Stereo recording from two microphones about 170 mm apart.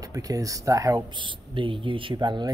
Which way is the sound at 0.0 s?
20° right (ahead or behind).